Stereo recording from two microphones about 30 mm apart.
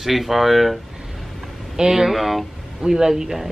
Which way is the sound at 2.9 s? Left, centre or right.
Centre.